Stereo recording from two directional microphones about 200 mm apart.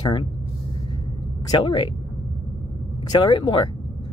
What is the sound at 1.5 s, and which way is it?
Speech, 20° left (ahead or behind).